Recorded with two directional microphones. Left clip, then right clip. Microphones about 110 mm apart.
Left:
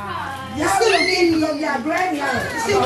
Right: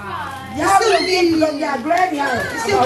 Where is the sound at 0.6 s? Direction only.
15° right (ahead or behind).